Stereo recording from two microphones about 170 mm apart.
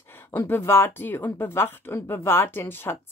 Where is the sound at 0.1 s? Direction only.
15° left (ahead or behind).